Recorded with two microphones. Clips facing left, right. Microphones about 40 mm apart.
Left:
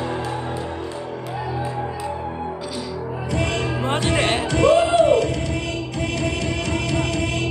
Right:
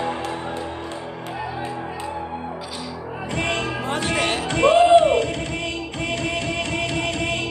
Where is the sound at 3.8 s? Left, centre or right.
Left.